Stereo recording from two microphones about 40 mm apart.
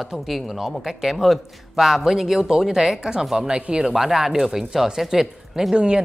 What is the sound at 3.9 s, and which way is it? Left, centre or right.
Speech, centre.